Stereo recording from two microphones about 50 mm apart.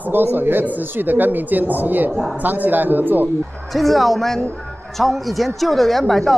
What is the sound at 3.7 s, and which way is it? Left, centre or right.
Speech, centre.